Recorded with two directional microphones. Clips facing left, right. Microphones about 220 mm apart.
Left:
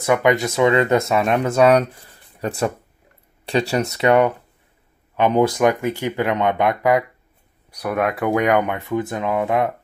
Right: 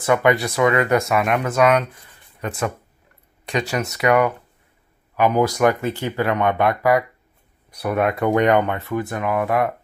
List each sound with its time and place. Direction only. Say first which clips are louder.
0.0 s speech: even; 15° left (ahead or behind)
7.9 s speech: right 1 dB; 5° left (ahead or behind)